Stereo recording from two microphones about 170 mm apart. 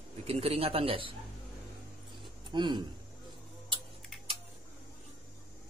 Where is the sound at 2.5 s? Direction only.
25° right (ahead or behind).